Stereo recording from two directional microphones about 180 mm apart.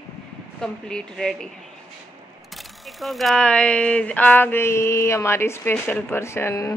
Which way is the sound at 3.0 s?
Centre (ahead or behind).